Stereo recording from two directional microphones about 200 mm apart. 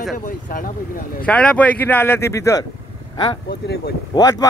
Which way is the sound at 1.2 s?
5° left (ahead or behind).